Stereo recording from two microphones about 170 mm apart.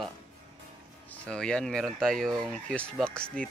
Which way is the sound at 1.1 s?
5° left (ahead or behind).